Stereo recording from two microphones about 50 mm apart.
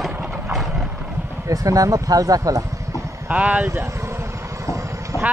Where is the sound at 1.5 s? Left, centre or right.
Right.